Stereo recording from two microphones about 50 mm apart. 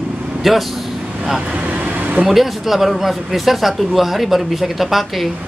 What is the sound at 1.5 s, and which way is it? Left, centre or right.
Vehicle, right.